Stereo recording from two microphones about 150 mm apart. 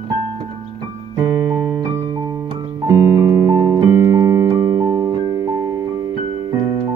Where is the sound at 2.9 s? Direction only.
25° right (ahead or behind).